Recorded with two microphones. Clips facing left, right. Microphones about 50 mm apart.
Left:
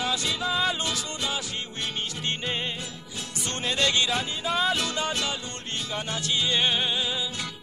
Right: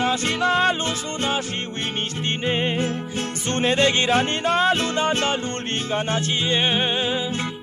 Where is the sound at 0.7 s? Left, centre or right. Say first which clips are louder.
Right 6 dB; right.